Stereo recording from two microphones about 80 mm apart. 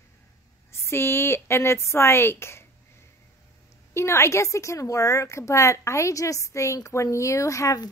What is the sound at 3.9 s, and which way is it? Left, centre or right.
A woman's voice, left.